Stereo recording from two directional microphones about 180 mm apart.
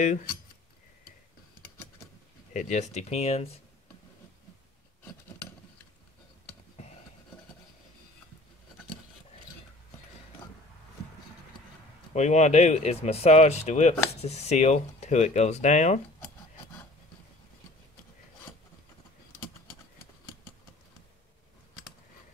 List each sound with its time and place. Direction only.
0.0 s speech: 45° left (ahead or behind)
2.5 s speech: 45° left (ahead or behind)
12.1 s speech: 40° left (ahead or behind)